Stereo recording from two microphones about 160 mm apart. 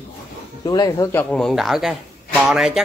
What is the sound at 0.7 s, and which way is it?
Speech, 25° left (ahead or behind).